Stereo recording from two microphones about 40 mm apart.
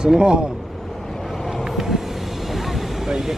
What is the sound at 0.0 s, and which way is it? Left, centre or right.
Speech, right.